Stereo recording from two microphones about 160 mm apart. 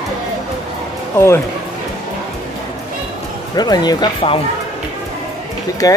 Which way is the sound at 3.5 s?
25° left (ahead or behind).